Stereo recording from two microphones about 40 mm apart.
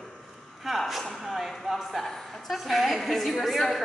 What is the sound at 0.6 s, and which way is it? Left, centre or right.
Speech, centre.